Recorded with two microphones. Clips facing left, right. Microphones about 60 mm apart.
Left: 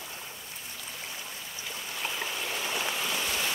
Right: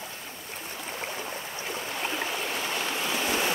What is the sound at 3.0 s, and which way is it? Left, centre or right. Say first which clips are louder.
Stream: right 4 dB; right.